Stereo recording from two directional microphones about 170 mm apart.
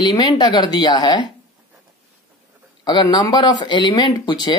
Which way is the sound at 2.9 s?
25° left (ahead or behind).